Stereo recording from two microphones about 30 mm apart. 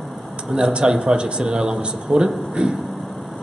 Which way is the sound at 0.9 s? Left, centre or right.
Right.